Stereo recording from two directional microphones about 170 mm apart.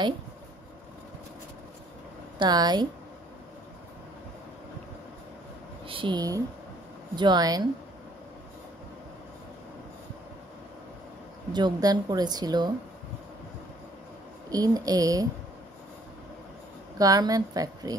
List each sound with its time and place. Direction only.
2.3 s a woman's voice: 25° right (ahead or behind)
5.9 s a woman's voice: 30° right (ahead or behind)
11.5 s a woman's voice: 25° right (ahead or behind)
14.5 s a woman's voice: 20° right (ahead or behind)
17.0 s a woman's voice: 20° right (ahead or behind)